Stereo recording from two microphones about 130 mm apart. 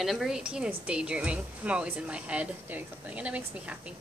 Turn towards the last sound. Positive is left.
turn(degrees=-10)  # may be behind; listen again after turning